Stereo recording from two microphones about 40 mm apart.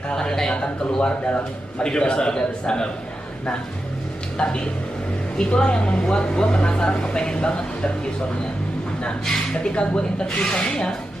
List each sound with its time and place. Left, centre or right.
0.1 s speech: centre
4.4 s speech: left
9.2 s speech: centre
9.6 s speech: left